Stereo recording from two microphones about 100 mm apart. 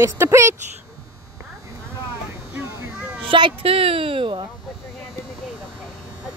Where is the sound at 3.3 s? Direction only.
55° right (ahead or behind).